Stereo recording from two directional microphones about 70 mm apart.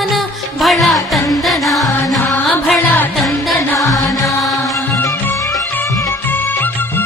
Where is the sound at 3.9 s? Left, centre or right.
Centre.